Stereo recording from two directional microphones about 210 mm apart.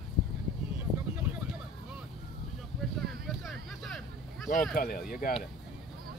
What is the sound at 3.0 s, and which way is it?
Vehicle, centre (ahead or behind).